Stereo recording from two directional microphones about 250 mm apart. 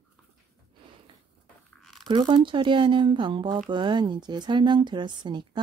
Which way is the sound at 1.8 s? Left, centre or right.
Centre.